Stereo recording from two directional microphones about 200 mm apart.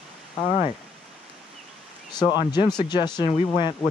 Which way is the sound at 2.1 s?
20° left (ahead or behind).